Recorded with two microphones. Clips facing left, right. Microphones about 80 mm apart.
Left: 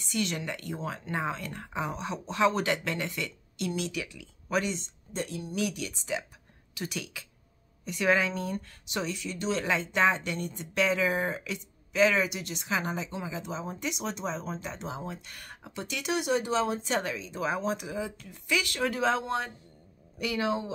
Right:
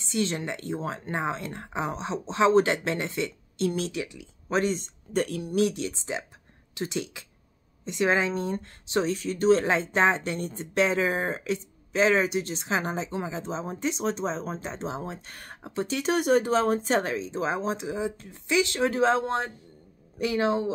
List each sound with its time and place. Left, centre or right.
0.0 s speech: right
4.6 s speech: right
5.6 s speech: right